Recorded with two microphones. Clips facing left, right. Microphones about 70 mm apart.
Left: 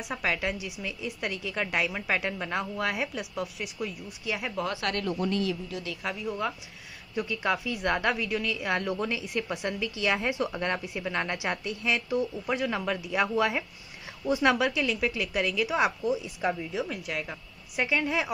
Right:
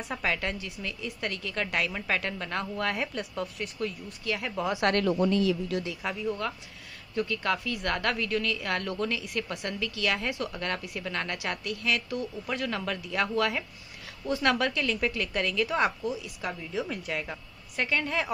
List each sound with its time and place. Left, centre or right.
0.0 s a woman's voice: centre
4.9 s speech: right
6.0 s a woman's voice: centre
16.1 s a woman's voice: left
16.7 s a woman's voice: centre